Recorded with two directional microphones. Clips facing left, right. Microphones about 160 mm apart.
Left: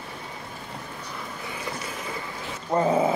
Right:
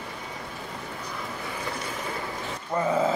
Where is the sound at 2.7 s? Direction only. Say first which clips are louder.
Left 3 dB; 30° left (ahead or behind).